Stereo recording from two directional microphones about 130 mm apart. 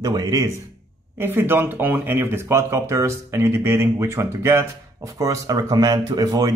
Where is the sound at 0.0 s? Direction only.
30° right (ahead or behind).